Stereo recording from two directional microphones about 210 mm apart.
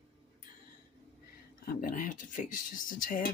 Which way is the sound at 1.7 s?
40° left (ahead or behind).